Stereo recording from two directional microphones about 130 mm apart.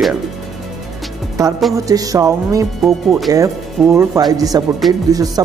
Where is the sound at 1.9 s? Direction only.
25° right (ahead or behind).